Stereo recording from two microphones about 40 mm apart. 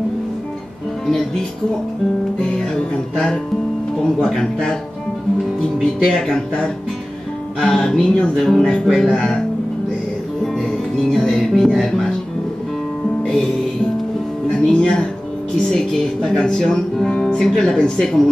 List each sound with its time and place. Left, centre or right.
2.4 s music: centre
4.0 s speech: centre
6.0 s speech: centre
11.1 s speech: centre
14.6 s speech: centre